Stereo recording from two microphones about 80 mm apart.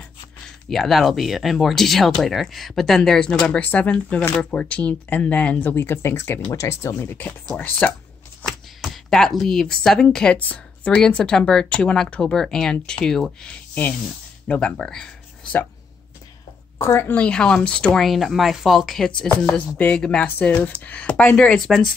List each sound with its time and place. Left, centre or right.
0.7 s speech: centre
3.5 s speech: centre
8.5 s a sound: centre
10.1 s speech: centre
16.7 s a woman's voice: left
17.1 s speech: centre
19.8 s speech: centre